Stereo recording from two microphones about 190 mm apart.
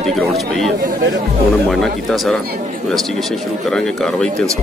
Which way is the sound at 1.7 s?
Centre (ahead or behind).